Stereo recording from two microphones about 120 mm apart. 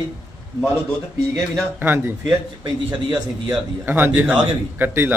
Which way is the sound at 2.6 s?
40° right (ahead or behind).